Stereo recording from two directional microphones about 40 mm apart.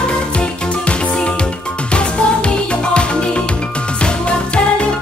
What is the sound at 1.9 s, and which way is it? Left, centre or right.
Music, left.